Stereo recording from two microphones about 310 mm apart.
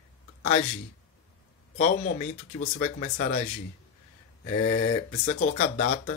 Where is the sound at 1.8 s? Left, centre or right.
Left.